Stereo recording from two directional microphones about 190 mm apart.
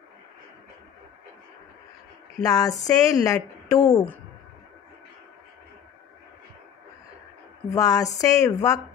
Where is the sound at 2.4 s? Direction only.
20° left (ahead or behind).